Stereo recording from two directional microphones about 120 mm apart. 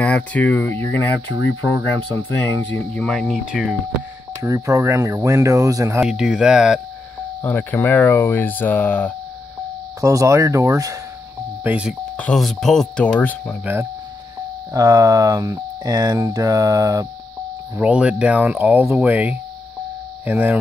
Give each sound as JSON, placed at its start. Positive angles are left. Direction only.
{"t": 0.0, "sound": "speech", "side_deg": 10}
{"t": 2.5, "sound": "speech", "side_deg": 10}
{"t": 4.4, "sound": "speech", "side_deg": -25}
{"t": 6.0, "sound": "speech", "side_deg": -5}
{"t": 7.4, "sound": "speech", "side_deg": 15}
{"t": 9.9, "sound": "speech", "side_deg": -25}
{"t": 11.6, "sound": "speech", "side_deg": -10}
{"t": 12.2, "sound": "speech", "side_deg": 5}
{"t": 14.7, "sound": "speech", "side_deg": -30}
{"t": 17.7, "sound": "speech", "side_deg": -10}